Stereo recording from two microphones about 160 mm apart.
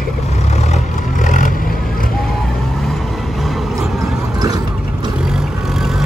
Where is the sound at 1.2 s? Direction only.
50° left (ahead or behind).